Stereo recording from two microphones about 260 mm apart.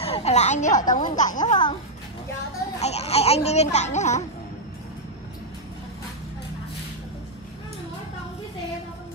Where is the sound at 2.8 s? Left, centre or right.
Left.